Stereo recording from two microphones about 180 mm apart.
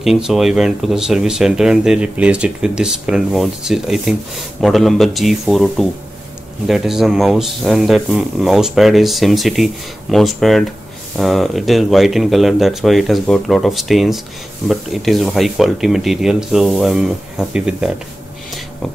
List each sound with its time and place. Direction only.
0.0 s speech: centre (ahead or behind)